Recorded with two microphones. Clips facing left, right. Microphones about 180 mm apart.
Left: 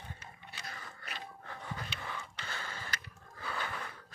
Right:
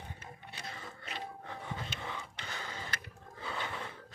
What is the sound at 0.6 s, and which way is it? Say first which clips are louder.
Pant: right 2 dB; 25° right (ahead or behind).